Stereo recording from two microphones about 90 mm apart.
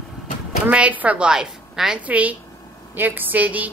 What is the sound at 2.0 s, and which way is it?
A woman's voice, 15° right (ahead or behind).